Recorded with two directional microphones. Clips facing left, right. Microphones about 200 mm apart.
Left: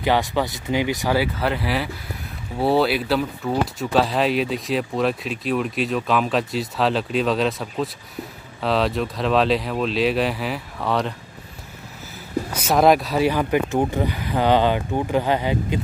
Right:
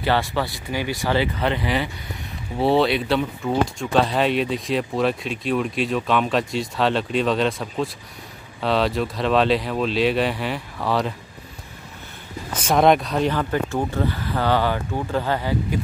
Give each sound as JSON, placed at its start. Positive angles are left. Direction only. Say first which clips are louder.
{"t": 0.0, "sound": "speech", "louder": "left 2 dB", "side_deg": 15}
{"t": 1.1, "sound": "speech", "louder": "right 2 dB", "side_deg": 5}
{"t": 12.5, "sound": "speech", "louder": "even", "side_deg": 5}